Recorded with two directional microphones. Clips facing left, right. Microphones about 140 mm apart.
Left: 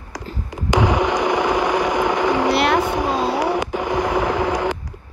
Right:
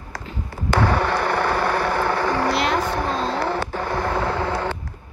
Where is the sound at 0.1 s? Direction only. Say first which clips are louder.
Left 2 dB; 15° left (ahead or behind).